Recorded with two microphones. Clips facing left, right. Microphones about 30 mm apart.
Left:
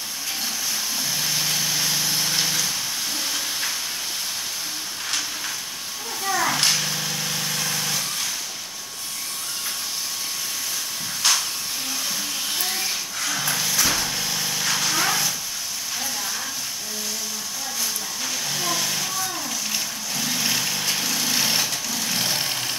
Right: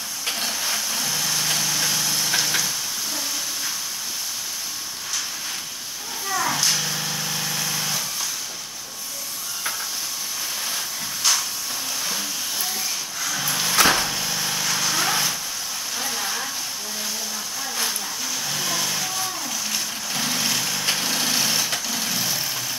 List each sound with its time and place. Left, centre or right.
1.1 s vehicle: centre
2.0 s a sound: centre
6.3 s children playing: centre
6.9 s vehicle: centre
11.2 s hiss: left
13.8 s vehicle: right
14.1 s light engine: centre
14.6 s vehicle: centre
16.0 s hair dryer: centre
18.5 s vehicle: centre
20.4 s vehicle: centre
20.9 s vehicle: centre
21.3 s vehicle: centre
22.2 s vehicle: left